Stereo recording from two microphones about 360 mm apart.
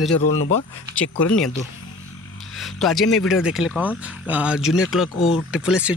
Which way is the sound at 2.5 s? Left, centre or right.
Centre.